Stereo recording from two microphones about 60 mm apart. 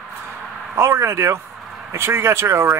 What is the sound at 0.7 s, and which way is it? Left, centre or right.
Speech, right.